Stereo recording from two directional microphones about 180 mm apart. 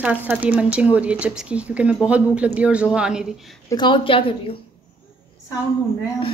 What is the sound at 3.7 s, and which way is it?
Speech, 25° left (ahead or behind).